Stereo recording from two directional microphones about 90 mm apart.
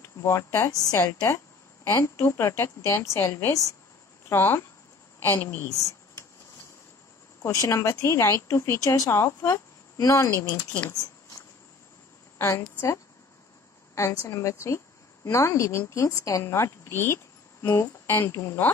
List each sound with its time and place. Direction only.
0.0 s a woman's voice: 30° left (ahead or behind)
5.7 s a sound: 35° left (ahead or behind)
7.4 s speech: 35° left (ahead or behind)
12.4 s a woman's voice: 30° left (ahead or behind)